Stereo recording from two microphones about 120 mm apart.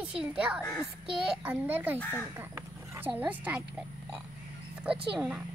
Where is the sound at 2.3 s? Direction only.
15° right (ahead or behind).